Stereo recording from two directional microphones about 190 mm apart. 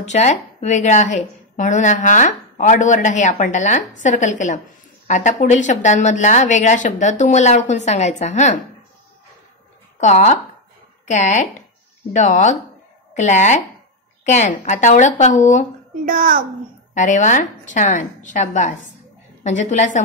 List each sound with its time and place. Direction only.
0.0 s a woman's voice: 35° left (ahead or behind)
9.9 s a woman's voice: 40° left (ahead or behind)
16.1 s a child's voice: 45° right (ahead or behind)
16.9 s a woman's voice: 40° left (ahead or behind)